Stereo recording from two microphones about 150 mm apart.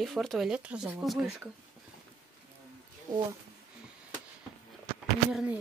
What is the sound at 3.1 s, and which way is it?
Speech, 65° right (ahead or behind).